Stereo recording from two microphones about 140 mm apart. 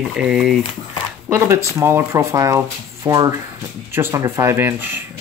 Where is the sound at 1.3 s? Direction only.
20° right (ahead or behind).